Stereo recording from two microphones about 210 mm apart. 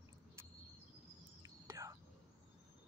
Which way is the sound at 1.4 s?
15° right (ahead or behind).